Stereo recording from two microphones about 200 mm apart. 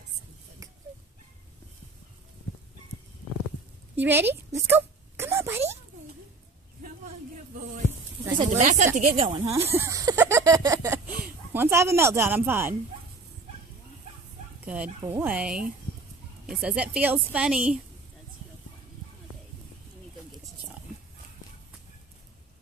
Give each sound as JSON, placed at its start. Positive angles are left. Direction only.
{"t": 3.9, "sound": "a woman's voice", "side_deg": -10}
{"t": 4.6, "sound": "a sound", "side_deg": -10}
{"t": 8.5, "sound": "a woman's voice", "side_deg": -35}
{"t": 9.5, "sound": "speech", "side_deg": -10}
{"t": 14.6, "sound": "a woman's voice", "side_deg": -10}